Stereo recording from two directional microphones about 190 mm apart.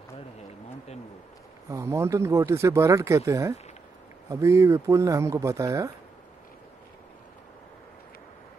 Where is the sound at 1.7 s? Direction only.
15° right (ahead or behind).